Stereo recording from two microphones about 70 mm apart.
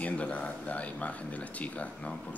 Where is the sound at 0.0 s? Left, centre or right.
Centre.